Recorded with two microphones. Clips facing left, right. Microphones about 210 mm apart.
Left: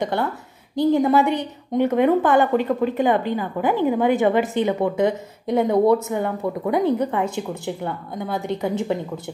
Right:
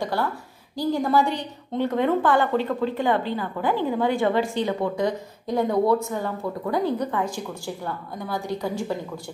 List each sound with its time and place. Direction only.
0.0 s a woman's voice: 20° left (ahead or behind)